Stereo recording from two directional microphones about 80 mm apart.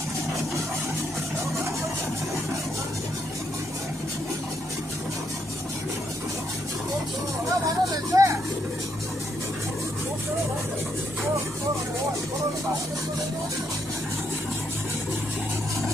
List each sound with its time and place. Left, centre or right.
8.1 s vehicle: right